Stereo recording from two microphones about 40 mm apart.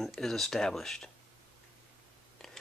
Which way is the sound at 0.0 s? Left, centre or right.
Centre.